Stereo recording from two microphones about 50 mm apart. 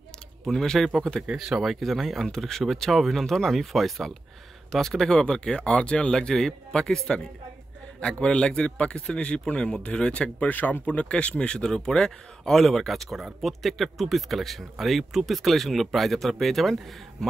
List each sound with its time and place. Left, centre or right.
0.5 s speech: centre
1.3 s speech: centre; by 10.5 s left
10.5 s speech: left; by 17.3 s centre